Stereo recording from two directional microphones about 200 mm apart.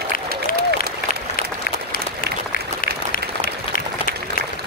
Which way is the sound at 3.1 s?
45° left (ahead or behind).